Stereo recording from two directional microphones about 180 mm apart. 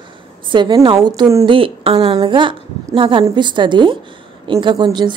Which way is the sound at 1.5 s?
30° right (ahead or behind).